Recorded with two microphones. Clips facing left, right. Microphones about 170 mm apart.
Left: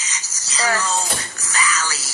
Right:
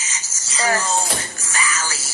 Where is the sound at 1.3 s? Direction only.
25° right (ahead or behind).